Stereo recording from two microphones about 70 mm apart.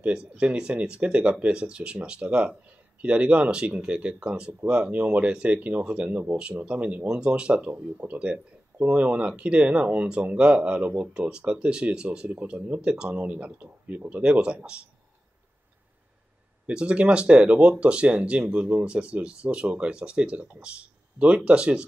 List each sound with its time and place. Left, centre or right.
0.0 s speech: centre
16.6 s speech: centre